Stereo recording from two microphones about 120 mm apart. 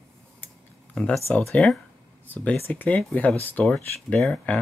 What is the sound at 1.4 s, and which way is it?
Speech, 5° left (ahead or behind).